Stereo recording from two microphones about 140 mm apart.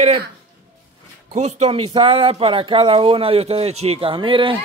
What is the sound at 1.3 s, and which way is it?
Speech, 55° right (ahead or behind).